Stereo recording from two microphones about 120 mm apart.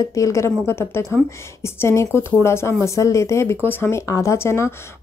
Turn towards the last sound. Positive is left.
turn(degrees=20)  # may be behind; listen again after turning